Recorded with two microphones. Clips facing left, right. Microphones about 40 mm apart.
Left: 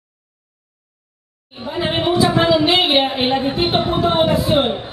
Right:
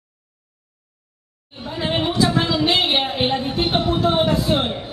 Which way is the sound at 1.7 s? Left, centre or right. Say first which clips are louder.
Left 4 dB; centre.